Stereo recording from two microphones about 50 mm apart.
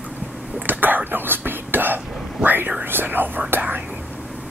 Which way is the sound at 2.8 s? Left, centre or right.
Right.